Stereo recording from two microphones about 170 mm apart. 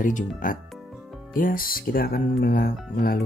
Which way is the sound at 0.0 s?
50° left (ahead or behind).